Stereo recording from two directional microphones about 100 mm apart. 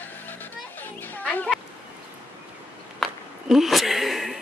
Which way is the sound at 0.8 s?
20° left (ahead or behind).